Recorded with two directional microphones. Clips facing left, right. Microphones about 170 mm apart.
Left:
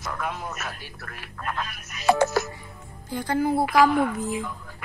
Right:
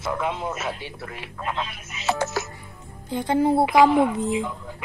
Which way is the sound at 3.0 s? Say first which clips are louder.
Right 4 dB; 25° right (ahead or behind).